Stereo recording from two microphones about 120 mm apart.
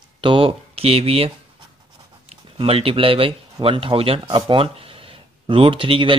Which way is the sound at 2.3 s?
55° right (ahead or behind).